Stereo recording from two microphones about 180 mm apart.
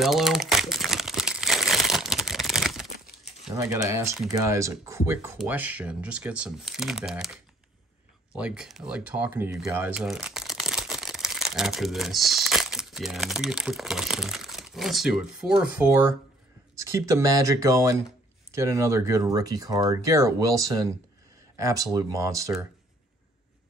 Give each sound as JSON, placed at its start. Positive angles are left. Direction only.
{"t": 0.0, "sound": "crumpling", "side_deg": 0}
{"t": 3.5, "sound": "speech", "side_deg": -20}
{"t": 8.4, "sound": "speech", "side_deg": -5}